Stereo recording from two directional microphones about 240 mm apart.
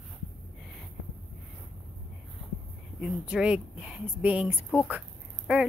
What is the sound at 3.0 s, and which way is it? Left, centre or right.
A woman's voice, centre.